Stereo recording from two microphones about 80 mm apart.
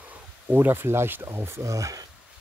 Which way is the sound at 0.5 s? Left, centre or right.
Right.